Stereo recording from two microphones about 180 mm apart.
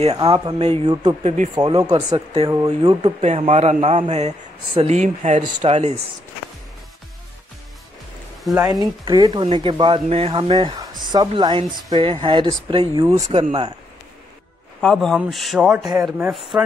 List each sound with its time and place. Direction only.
0.0 s speech: 35° right (ahead or behind)
8.5 s speech: 20° right (ahead or behind)
13.1 s speech: 35° right (ahead or behind)
14.8 s speech: 5° left (ahead or behind)
15.8 s speech: 20° right (ahead or behind)
16.1 s speech: centre (ahead or behind)